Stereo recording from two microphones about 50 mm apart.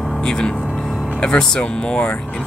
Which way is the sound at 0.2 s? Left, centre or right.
Centre.